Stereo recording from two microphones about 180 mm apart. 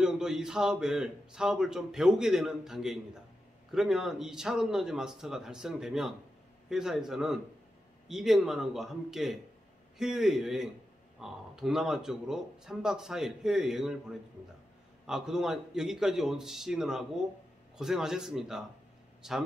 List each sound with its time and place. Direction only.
0.0 s a man's voice: 5° right (ahead or behind)